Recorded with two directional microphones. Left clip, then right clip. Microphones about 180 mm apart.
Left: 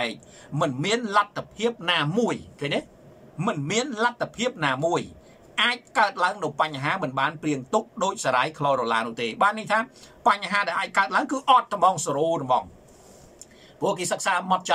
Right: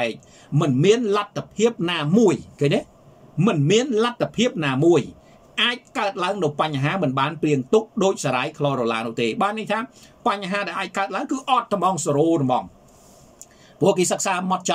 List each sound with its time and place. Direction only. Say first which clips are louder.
0.0 s speech: right 4 dB; 20° right (ahead or behind)
13.7 s speech: right 6 dB; 20° right (ahead or behind)